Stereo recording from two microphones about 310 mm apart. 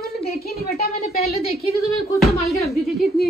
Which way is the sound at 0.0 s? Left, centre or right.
Left.